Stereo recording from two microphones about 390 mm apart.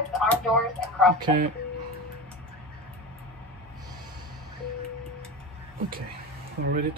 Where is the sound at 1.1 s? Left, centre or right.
Centre.